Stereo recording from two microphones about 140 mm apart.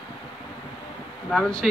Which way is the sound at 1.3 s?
5° left (ahead or behind).